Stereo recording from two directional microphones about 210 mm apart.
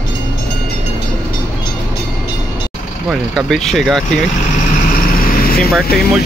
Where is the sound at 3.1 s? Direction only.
Centre (ahead or behind).